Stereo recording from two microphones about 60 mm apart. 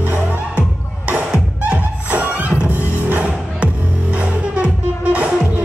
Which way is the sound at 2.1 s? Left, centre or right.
Right.